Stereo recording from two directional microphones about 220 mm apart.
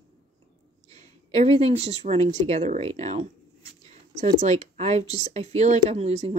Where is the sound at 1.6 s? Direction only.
30° right (ahead or behind).